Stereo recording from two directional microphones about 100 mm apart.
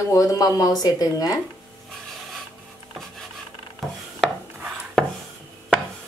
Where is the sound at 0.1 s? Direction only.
35° left (ahead or behind).